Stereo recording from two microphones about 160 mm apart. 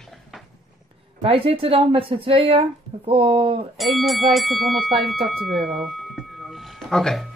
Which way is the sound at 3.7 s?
Centre (ahead or behind).